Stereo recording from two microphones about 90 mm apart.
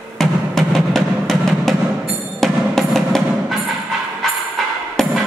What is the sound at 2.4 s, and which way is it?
Percussion, 5° left (ahead or behind).